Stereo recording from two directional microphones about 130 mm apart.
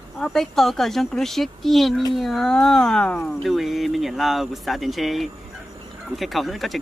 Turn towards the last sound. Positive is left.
turn(degrees=0)  # may be behind; listen again after turning